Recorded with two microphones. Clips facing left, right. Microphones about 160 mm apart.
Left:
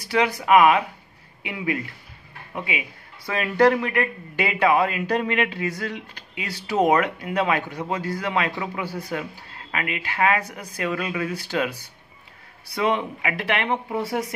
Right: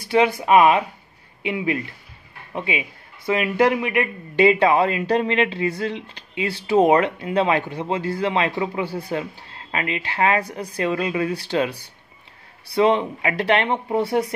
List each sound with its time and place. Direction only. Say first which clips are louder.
0.1 s speech: right 2 dB; 25° right (ahead or behind)
4.5 s speech: right 2 dB; 30° right (ahead or behind)
12.7 s speech: right 5 dB; 30° right (ahead or behind)